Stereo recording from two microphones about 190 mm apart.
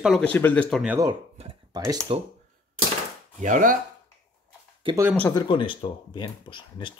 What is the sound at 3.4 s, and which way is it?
Speech, 45° right (ahead or behind).